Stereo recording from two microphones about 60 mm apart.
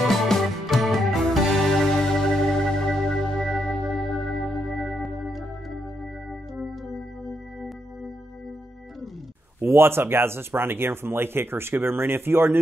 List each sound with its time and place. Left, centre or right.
0.0 s music: centre
9.6 s speech: right